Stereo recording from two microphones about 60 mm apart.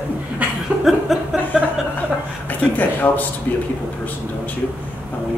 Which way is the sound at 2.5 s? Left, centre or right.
Left.